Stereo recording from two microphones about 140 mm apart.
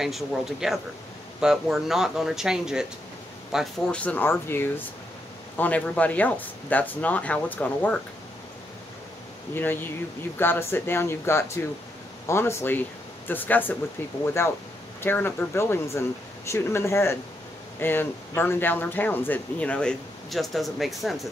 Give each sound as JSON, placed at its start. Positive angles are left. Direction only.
{"t": 0.0, "sound": "speech", "side_deg": 0}
{"t": 3.5, "sound": "speech", "side_deg": 5}
{"t": 9.5, "sound": "speech", "side_deg": 15}